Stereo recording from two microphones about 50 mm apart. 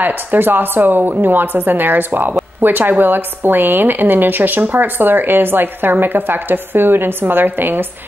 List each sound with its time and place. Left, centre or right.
0.0 s a woman's voice: right